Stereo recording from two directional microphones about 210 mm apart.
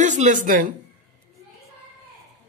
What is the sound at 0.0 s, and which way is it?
Speech, 35° right (ahead or behind).